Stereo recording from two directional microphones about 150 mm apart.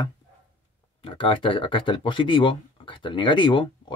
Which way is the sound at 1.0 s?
35° left (ahead or behind).